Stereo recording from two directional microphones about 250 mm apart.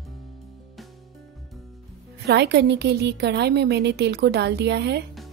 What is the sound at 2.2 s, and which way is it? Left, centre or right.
A woman's voice, right.